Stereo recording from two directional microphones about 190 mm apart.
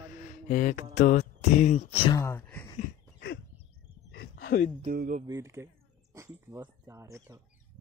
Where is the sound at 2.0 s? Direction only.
15° left (ahead or behind).